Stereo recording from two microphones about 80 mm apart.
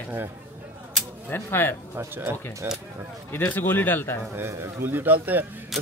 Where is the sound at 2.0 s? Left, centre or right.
Right.